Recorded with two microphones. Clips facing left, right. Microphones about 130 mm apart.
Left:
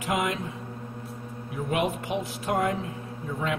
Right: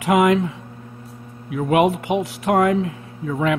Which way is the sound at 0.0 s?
90° right.